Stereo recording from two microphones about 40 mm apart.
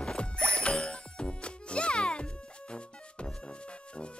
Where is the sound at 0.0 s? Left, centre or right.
Left.